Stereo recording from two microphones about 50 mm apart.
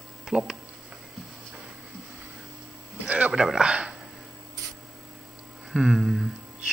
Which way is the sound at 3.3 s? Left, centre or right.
Centre.